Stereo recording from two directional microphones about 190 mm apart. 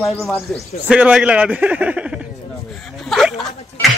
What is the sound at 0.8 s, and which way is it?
A man's voice, 5° right (ahead or behind).